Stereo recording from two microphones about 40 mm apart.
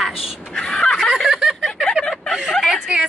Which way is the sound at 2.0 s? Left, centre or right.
Centre.